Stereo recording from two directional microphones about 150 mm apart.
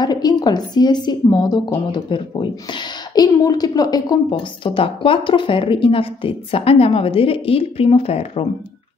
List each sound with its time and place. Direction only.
0.0 s speech: 25° left (ahead or behind)